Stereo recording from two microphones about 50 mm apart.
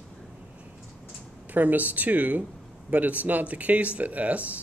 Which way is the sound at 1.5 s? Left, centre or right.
Right.